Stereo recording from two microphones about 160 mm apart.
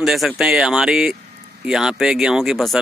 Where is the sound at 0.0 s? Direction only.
Centre (ahead or behind).